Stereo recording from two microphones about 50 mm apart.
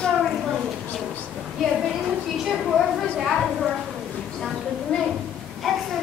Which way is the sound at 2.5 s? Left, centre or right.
Centre.